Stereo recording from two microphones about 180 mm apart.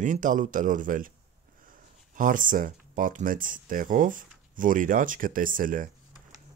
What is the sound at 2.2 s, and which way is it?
Speech, 50° right (ahead or behind).